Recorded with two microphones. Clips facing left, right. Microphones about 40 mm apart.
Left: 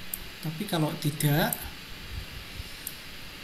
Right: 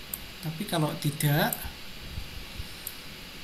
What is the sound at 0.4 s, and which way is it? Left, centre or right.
Speech, centre.